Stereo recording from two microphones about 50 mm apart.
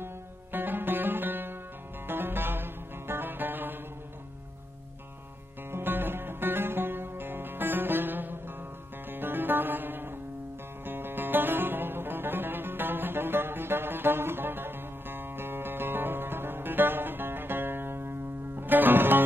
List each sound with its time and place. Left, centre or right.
0.0 s music: right
5.7 s music: right